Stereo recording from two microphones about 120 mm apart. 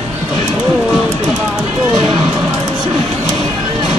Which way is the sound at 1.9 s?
45° right (ahead or behind).